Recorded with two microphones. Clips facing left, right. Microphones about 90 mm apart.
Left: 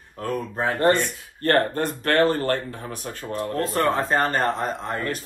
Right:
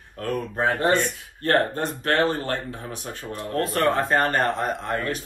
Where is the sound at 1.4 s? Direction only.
55° left (ahead or behind).